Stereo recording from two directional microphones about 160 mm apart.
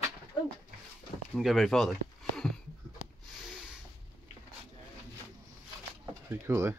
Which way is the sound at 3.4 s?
5° right (ahead or behind).